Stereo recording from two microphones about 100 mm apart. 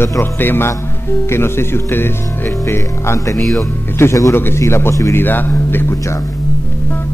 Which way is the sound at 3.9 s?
30° left (ahead or behind).